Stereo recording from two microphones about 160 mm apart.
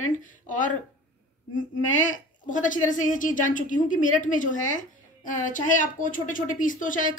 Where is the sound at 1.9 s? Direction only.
50° left (ahead or behind).